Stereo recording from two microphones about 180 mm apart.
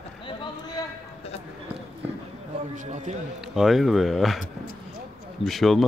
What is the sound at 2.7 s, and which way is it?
Speech, 45° right (ahead or behind).